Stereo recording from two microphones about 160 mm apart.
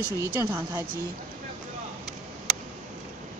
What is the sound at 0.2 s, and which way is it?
Speech, 15° right (ahead or behind).